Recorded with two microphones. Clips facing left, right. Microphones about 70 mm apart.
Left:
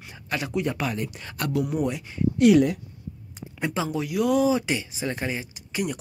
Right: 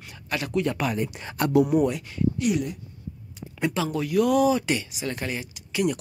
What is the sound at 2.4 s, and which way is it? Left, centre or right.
Speech, left.